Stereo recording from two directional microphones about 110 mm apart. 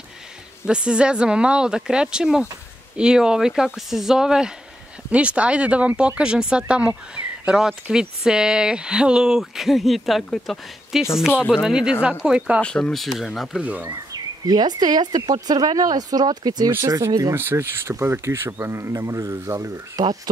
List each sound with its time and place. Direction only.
0.7 s speech: 10° right (ahead or behind)
12.6 s speech: 10° left (ahead or behind)
13.6 s speech: 15° right (ahead or behind)
14.1 s speech: 35° right (ahead or behind)
16.7 s speech: 25° right (ahead or behind)
17.4 s speech: 20° right (ahead or behind)